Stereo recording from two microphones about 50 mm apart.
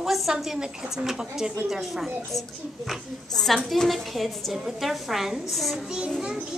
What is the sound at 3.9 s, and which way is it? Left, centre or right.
A woman's voice, centre.